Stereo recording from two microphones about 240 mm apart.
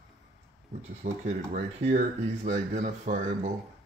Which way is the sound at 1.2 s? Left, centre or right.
Right.